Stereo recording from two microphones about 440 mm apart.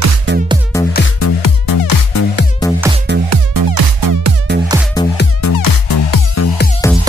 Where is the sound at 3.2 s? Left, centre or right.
Right.